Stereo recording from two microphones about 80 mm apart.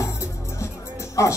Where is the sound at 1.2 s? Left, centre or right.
Left.